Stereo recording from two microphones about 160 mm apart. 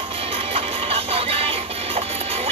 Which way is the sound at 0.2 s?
35° right (ahead or behind).